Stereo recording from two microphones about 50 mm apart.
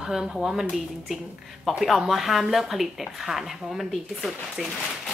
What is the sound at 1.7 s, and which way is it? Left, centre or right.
Speech, centre.